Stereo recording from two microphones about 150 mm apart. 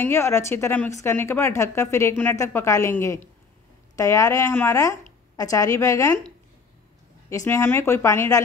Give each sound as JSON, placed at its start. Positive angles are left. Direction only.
{"t": 0.0, "sound": "a woman's voice", "side_deg": 15}
{"t": 7.2, "sound": "a woman's voice", "side_deg": 20}